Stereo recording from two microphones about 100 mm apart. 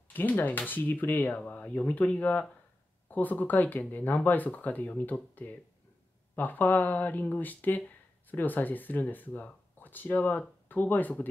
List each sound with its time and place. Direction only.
0.1 s speech: 20° left (ahead or behind)